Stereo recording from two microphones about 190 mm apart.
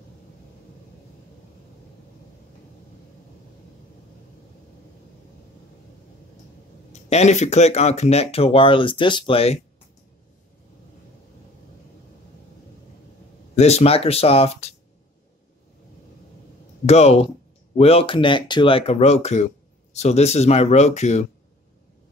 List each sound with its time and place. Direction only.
6.9 s speech: 35° left (ahead or behind)
13.6 s speech: 35° left (ahead or behind)
16.8 s speech: 35° left (ahead or behind)